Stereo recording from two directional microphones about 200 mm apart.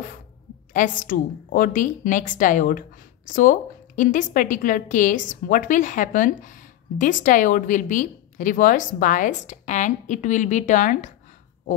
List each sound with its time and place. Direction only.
0.7 s a woman's voice: 40° left (ahead or behind)